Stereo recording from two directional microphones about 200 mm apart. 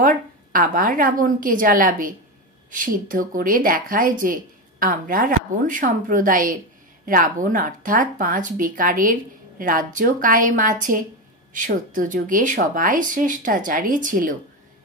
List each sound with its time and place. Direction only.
0.0 s a woman's voice: 45° right (ahead or behind)